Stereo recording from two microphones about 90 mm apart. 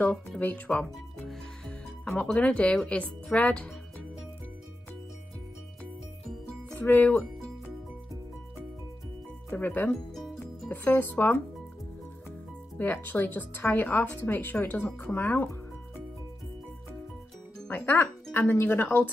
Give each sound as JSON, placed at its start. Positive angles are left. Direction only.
{"t": 0.4, "sound": "speech", "side_deg": 15}
{"t": 6.7, "sound": "speech", "side_deg": 20}
{"t": 9.5, "sound": "speech", "side_deg": 20}
{"t": 12.7, "sound": "speech", "side_deg": 20}
{"t": 17.6, "sound": "speech", "side_deg": 25}